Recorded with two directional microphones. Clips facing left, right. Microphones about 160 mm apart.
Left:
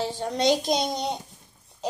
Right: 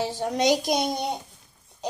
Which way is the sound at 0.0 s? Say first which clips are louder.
Right 1 dB; 10° right (ahead or behind).